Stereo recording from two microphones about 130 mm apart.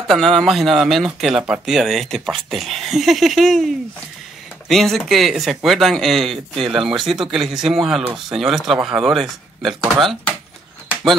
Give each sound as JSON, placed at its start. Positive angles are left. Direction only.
{"t": 0.1, "sound": "speech", "side_deg": 0}